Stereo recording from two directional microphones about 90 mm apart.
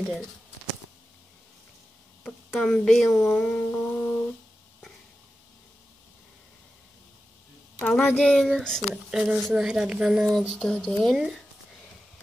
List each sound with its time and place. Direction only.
2.2 s speech: 5° left (ahead or behind)
3.3 s music: 15° left (ahead or behind)
7.8 s music: 5° left (ahead or behind)
8.2 s speech: 5° left (ahead or behind)
10.5 s speech: 5° left (ahead or behind)